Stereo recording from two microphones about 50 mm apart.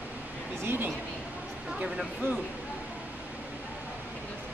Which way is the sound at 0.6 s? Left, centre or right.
Right.